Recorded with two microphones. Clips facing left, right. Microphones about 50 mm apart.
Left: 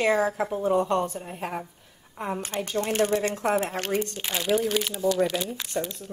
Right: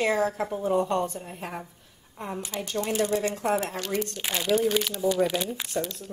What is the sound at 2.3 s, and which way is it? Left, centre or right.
A woman's voice, left.